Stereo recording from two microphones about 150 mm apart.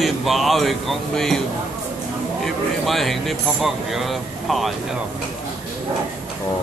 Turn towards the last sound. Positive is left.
turn(degrees=0)  # may be behind; listen again after turning